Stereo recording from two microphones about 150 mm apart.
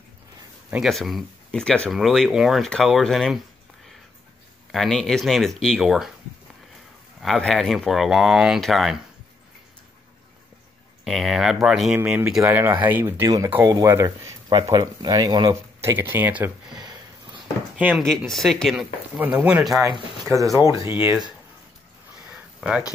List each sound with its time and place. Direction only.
0.7 s speech: 5° right (ahead or behind)
4.7 s speech: 5° left (ahead or behind)
7.2 s speech: centre (ahead or behind)
11.1 s speech: centre (ahead or behind); by 15.5 s 30° right (ahead or behind)
15.8 s speech: 15° right (ahead or behind)
16.7 s a sound: 30° right (ahead or behind)
17.7 s speech: 10° right (ahead or behind)
18.1 s speech: centre (ahead or behind)
19.1 s speech: 10° right (ahead or behind)
20.5 s speech: 20° right (ahead or behind)
22.3 s a sound: 5° right (ahead or behind)